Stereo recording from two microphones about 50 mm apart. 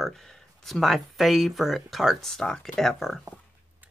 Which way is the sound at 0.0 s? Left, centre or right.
Centre.